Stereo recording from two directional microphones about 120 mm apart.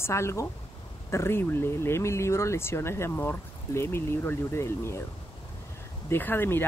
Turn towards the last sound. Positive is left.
turn(degrees=20)  # may be behind; listen again after turning